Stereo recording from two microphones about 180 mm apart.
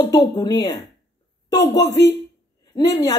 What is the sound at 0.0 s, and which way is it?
Speech, 20° left (ahead or behind).